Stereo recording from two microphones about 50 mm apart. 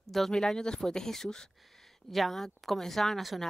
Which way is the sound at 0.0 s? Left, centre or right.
Centre.